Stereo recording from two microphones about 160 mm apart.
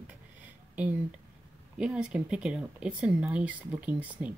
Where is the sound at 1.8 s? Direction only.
5° right (ahead or behind).